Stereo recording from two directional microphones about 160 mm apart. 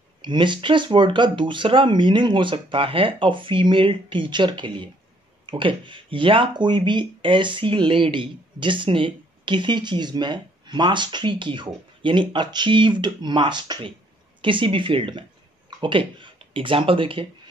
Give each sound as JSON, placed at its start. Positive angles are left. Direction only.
{"t": 0.2, "sound": "speech", "side_deg": -30}